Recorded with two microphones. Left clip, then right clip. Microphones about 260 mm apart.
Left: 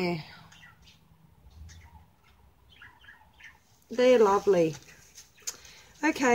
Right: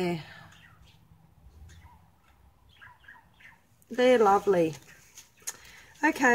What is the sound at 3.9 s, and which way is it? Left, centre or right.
Speech, centre.